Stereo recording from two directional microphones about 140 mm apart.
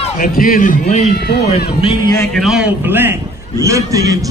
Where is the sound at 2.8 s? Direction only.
15° right (ahead or behind).